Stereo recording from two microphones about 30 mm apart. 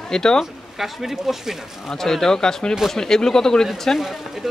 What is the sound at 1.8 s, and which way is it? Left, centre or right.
Speech, centre.